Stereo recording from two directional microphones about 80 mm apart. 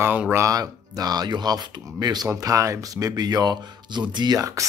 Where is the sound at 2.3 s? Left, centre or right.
Right.